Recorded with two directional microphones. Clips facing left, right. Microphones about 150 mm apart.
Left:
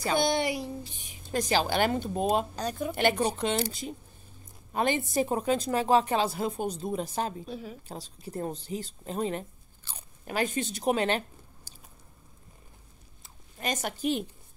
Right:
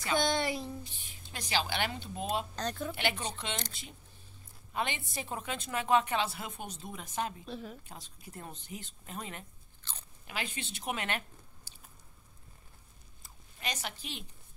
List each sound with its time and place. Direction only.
0.2 s speech: 10° left (ahead or behind)
1.2 s speech: 45° left (ahead or behind)
2.5 s speech: 10° left (ahead or behind)
2.9 s a woman's voice: 45° left (ahead or behind)
4.7 s a woman's voice: 40° left (ahead or behind)
7.4 s a woman's voice: 5° left (ahead or behind)
7.9 s a woman's voice: 35° left (ahead or behind)
9.9 s speech: 10° left (ahead or behind)
10.2 s speech: 45° left (ahead or behind)
13.6 s speech: 45° left (ahead or behind)